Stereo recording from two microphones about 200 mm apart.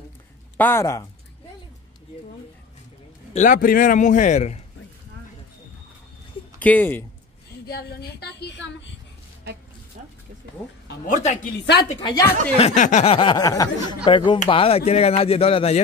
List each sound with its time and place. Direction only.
0.6 s a woman's voice: 10° left (ahead or behind)
3.3 s a man's voice: 45° left (ahead or behind)
6.6 s a woman's voice: 10° left (ahead or behind)
7.6 s speech: 55° left (ahead or behind)
9.9 s a sound: 40° right (ahead or behind)
11.5 s speech: 55° left (ahead or behind)
12.0 s a woman's voice: 15° left (ahead or behind)
12.5 s speech: 35° left (ahead or behind)